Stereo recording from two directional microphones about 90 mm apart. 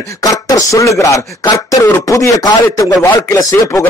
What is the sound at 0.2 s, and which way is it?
A man's voice, 40° left (ahead or behind).